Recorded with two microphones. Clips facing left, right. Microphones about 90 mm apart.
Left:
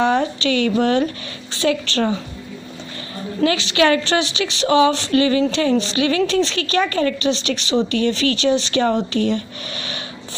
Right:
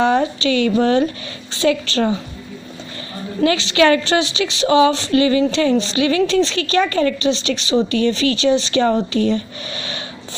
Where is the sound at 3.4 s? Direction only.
30° right (ahead or behind).